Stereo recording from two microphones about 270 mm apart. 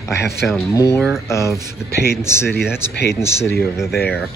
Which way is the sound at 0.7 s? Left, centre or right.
Centre.